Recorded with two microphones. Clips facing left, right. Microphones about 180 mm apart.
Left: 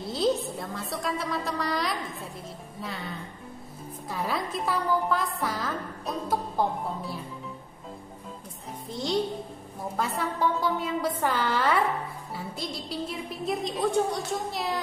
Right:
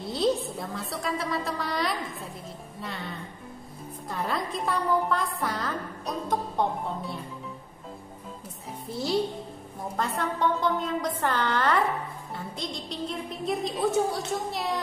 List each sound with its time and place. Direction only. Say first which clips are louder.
0.0 s a woman's voice: even; centre (ahead or behind)
8.9 s a woman's voice: right 1 dB; 5° right (ahead or behind)
9.9 s a woman's voice: even; 5° left (ahead or behind)